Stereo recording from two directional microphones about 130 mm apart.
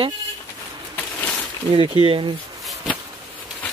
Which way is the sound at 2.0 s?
40° right (ahead or behind).